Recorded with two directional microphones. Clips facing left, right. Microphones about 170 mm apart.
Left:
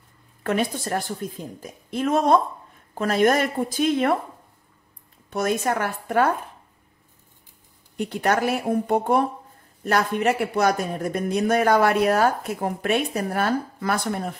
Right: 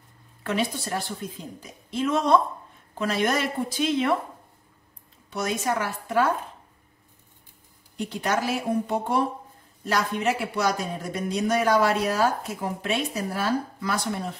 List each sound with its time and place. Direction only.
0.4 s a woman's voice: 50° left (ahead or behind)
5.3 s speech: 55° left (ahead or behind)
8.0 s speech: 55° left (ahead or behind)